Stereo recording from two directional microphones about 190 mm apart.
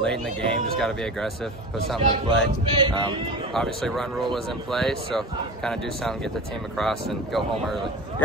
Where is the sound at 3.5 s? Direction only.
Centre (ahead or behind).